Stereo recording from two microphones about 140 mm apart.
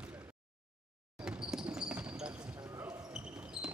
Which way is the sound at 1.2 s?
5° right (ahead or behind).